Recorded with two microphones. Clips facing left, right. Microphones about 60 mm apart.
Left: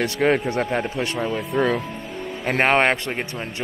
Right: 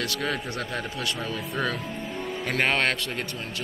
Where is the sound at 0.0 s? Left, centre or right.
Left.